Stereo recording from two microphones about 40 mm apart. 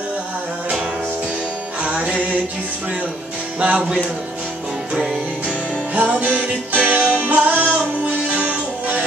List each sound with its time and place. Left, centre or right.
1.8 s music: right
3.5 s music: right
5.9 s music: right